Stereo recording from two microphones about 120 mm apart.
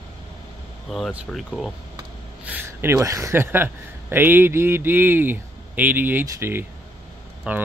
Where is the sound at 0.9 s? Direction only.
Centre (ahead or behind).